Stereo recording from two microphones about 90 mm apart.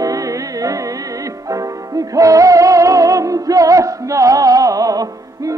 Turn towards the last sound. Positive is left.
turn(degrees=-40)  # may be behind; listen again after turning